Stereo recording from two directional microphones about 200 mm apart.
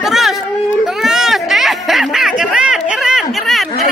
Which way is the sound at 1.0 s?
Centre (ahead or behind).